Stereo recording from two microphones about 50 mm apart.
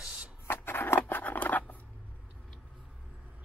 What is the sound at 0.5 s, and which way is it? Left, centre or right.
Scissors, left.